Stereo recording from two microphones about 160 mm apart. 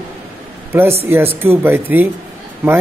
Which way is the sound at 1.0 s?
15° right (ahead or behind).